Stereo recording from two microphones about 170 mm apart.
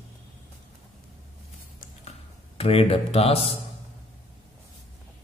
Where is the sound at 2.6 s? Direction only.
35° left (ahead or behind).